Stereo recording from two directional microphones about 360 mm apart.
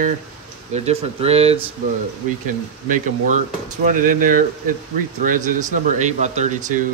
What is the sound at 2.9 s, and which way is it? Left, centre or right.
Speech, right.